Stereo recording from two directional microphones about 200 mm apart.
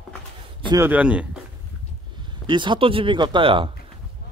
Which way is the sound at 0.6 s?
20° right (ahead or behind).